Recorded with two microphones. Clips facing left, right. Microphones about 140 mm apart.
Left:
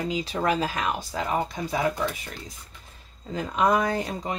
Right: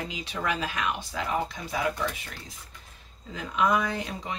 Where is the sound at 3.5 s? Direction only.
40° left (ahead or behind).